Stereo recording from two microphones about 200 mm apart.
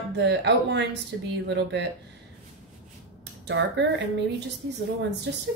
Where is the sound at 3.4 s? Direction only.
60° right (ahead or behind).